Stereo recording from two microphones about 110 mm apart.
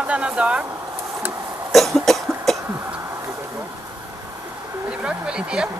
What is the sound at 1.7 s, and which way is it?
Cough, centre (ahead or behind).